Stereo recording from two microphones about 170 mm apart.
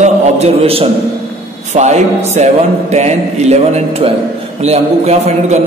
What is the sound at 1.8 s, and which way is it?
A man's voice, 40° right (ahead or behind).